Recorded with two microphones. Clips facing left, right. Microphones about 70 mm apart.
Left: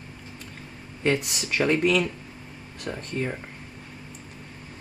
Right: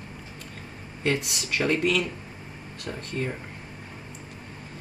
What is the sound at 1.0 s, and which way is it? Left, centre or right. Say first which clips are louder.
Speech: left 2 dB; centre.